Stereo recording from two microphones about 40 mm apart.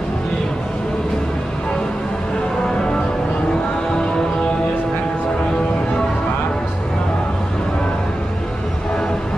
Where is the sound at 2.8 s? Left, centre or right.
Centre.